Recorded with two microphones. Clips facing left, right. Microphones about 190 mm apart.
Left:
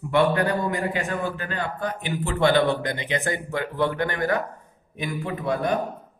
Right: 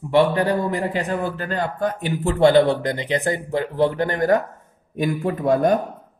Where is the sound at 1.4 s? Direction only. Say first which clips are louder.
Right 5 dB; 40° right (ahead or behind).